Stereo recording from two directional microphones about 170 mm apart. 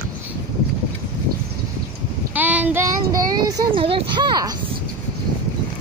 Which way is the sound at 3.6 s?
30° right (ahead or behind).